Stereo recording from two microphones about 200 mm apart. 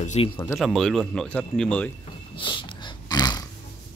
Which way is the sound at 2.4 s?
25° left (ahead or behind).